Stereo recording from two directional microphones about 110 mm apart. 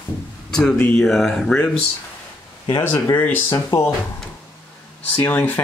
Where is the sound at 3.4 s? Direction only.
35° left (ahead or behind).